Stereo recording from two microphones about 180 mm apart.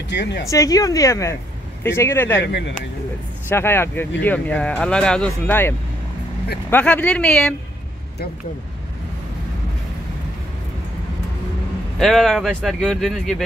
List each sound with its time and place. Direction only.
0.1 s speech: 70° left (ahead or behind)
0.5 s speech: 20° left (ahead or behind)
2.4 s speech: 75° left (ahead or behind)
3.4 s speech: 15° left (ahead or behind)
12.0 s speech: centre (ahead or behind)